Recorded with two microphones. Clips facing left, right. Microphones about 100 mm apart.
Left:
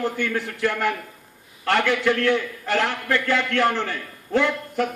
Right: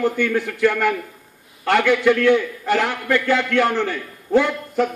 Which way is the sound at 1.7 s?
15° right (ahead or behind).